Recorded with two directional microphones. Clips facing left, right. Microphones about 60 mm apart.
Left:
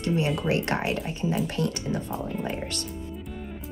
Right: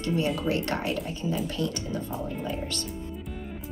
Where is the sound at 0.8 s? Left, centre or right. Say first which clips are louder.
Left 1 dB; left.